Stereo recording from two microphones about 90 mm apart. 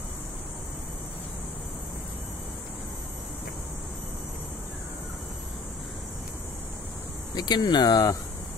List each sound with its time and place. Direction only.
7.3 s speech: 50° left (ahead or behind)